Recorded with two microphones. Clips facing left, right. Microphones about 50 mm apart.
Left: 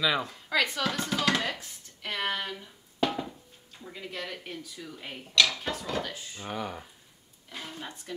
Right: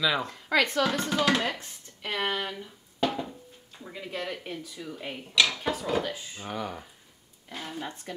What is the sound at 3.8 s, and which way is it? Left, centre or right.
Dishes, centre.